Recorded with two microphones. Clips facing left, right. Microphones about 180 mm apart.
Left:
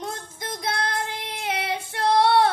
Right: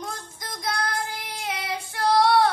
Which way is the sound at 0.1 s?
25° left (ahead or behind).